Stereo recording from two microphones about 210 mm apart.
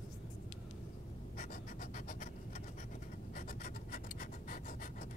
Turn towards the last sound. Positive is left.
turn(degrees=40)  # may be behind; listen again after turning